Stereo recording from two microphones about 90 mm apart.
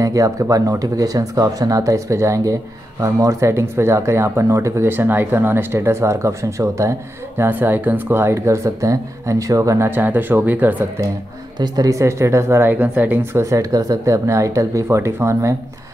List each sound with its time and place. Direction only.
0.0 s speech: 40° right (ahead or behind)
9.8 s speech: 20° right (ahead or behind)
11.6 s speech: 45° right (ahead or behind)